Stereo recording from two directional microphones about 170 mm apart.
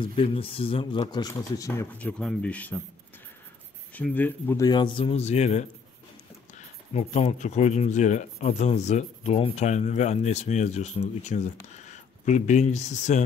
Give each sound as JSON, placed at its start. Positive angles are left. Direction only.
{"t": 0.0, "sound": "speech", "side_deg": 35}
{"t": 2.0, "sound": "speech", "side_deg": 5}
{"t": 3.9, "sound": "speech", "side_deg": 10}
{"t": 4.6, "sound": "speech", "side_deg": 25}
{"t": 6.9, "sound": "speech", "side_deg": 40}